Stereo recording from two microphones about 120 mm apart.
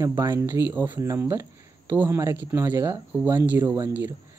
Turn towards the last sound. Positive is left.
turn(degrees=-25)  # may be behind; listen again after turning